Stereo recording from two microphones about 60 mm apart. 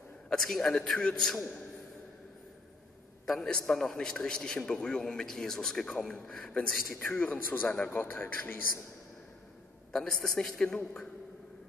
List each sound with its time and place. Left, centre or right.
0.3 s a man's voice: centre
3.4 s a man's voice: centre
7.2 s a man's voice: left
9.9 s a man's voice: centre